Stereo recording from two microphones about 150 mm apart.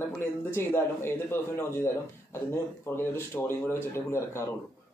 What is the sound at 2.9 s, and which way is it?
A man's voice, 15° left (ahead or behind).